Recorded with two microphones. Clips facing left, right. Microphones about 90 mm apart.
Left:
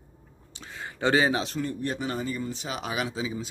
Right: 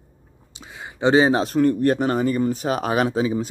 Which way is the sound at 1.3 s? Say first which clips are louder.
Right 8 dB; 40° right (ahead or behind).